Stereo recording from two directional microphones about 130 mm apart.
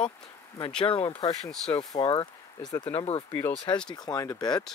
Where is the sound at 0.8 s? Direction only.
45° left (ahead or behind).